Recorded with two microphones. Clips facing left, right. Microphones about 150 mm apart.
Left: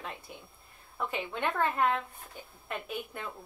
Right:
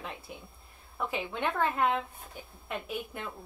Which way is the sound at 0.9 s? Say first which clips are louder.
Right 1 dB; 5° right (ahead or behind).